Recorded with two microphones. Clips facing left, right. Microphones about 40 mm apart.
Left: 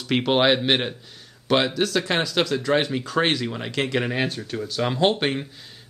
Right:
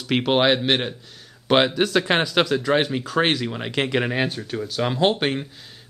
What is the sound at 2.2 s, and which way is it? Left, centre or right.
Speech, centre.